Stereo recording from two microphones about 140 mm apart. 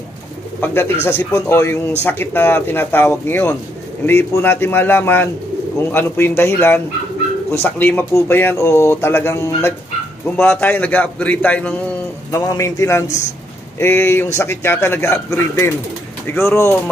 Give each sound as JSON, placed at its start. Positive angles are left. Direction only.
{"t": 0.6, "sound": "speech", "side_deg": 15}
{"t": 12.3, "sound": "a man's voice", "side_deg": 20}